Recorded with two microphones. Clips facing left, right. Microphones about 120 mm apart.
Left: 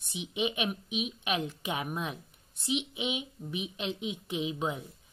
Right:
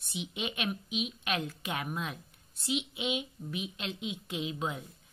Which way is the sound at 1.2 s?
15° left (ahead or behind).